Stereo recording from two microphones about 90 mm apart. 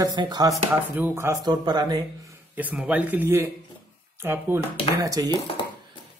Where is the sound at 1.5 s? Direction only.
50° right (ahead or behind).